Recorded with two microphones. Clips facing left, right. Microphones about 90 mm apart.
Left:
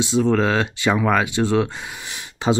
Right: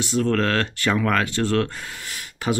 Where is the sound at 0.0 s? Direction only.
15° left (ahead or behind).